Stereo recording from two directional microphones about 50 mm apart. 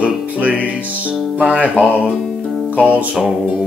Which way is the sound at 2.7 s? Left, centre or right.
Right.